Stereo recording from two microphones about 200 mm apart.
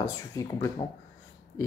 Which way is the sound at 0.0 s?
15° left (ahead or behind).